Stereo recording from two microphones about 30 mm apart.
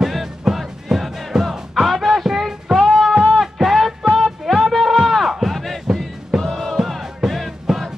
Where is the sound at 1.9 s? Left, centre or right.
Centre.